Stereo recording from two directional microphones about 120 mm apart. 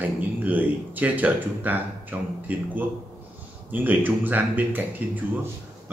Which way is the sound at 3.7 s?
15° right (ahead or behind).